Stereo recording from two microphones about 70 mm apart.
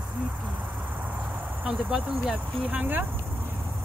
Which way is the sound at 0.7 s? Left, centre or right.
Right.